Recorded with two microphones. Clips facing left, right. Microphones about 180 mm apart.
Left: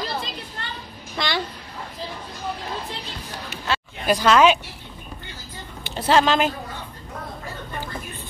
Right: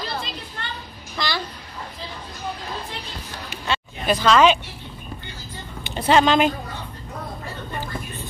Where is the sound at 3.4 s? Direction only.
5° left (ahead or behind).